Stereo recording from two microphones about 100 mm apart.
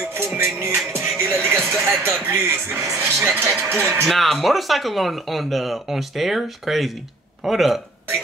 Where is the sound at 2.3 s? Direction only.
25° right (ahead or behind).